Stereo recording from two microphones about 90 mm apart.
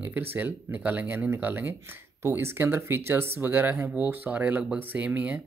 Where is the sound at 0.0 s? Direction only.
20° right (ahead or behind).